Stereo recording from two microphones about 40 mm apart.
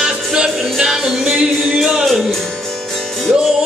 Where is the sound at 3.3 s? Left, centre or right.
Centre.